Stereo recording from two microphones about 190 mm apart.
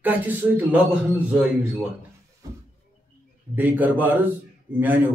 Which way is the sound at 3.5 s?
10° right (ahead or behind).